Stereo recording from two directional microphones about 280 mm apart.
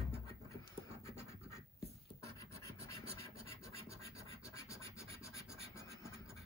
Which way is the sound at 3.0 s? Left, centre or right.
Right.